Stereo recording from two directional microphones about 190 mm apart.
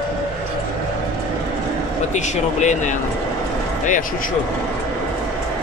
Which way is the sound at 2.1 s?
40° left (ahead or behind).